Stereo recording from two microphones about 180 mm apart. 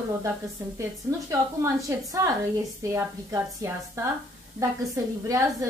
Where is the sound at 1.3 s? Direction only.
15° right (ahead or behind).